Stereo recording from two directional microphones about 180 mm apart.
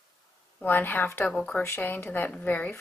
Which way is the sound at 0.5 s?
10° left (ahead or behind).